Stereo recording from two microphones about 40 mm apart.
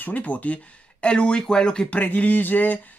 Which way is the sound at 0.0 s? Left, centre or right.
Left.